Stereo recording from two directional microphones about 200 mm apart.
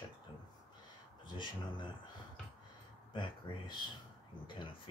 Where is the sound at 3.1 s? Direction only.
25° left (ahead or behind).